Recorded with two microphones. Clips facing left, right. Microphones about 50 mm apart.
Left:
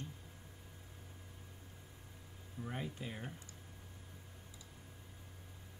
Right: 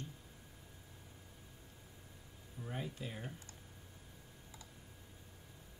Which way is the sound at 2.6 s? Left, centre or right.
Centre.